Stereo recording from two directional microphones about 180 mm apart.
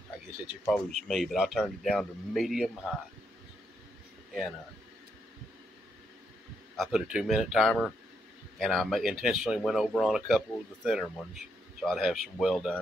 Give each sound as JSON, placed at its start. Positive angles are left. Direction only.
{"t": 0.7, "sound": "speech", "side_deg": 0}
{"t": 6.8, "sound": "speech", "side_deg": -5}